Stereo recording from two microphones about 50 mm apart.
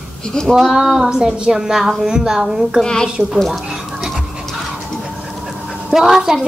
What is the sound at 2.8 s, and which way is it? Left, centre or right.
Speech, centre.